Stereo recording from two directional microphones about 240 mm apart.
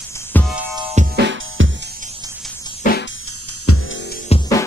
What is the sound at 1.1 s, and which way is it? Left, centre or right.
Music, right.